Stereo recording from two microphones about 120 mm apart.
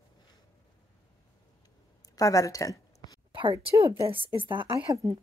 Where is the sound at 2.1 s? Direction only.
30° left (ahead or behind).